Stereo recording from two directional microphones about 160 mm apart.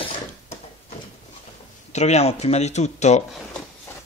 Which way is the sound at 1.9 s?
45° left (ahead or behind).